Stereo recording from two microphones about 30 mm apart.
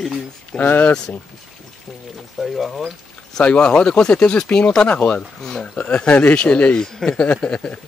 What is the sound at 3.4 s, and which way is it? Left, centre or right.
Speech, left.